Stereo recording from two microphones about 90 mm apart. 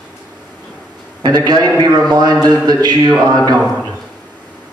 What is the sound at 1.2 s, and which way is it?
A man's voice, 50° right (ahead or behind).